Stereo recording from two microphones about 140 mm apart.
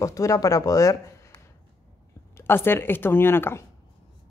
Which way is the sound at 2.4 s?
15° left (ahead or behind).